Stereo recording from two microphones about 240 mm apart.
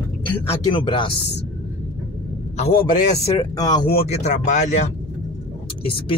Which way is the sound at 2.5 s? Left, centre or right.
Left.